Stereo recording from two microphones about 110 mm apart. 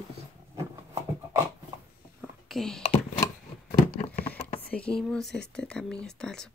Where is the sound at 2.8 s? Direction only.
75° left (ahead or behind).